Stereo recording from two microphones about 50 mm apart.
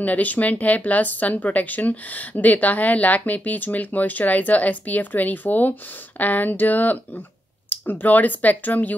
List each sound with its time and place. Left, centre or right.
0.0 s speech: left